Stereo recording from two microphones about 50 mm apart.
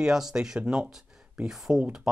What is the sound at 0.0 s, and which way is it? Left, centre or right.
Speech, centre.